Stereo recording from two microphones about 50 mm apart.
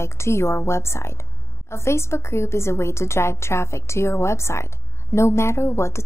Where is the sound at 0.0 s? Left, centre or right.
Left.